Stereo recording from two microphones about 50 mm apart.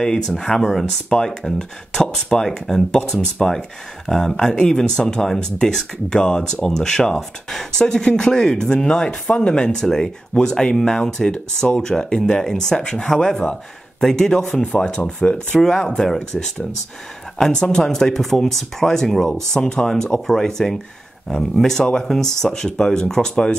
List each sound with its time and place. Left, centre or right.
0.0 s speech: centre
17.5 s speech: centre